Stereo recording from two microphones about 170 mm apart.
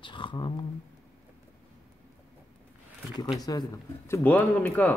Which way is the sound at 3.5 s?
20° left (ahead or behind).